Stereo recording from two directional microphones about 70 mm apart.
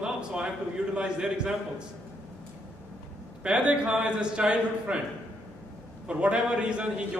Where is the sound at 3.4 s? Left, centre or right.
Centre.